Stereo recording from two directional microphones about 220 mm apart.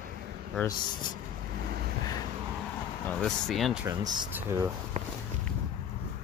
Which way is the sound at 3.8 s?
15° right (ahead or behind).